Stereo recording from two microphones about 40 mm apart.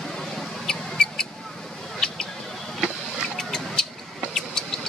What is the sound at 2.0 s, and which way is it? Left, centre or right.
Rodents, centre.